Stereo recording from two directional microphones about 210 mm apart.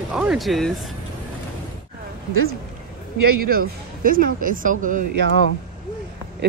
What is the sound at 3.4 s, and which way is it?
Speech, 45° right (ahead or behind).